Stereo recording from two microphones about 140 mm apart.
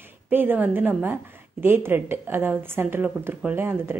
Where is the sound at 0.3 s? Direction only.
15° right (ahead or behind).